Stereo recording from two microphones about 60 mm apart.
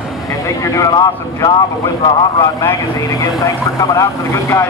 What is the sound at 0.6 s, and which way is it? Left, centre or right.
Speech, left.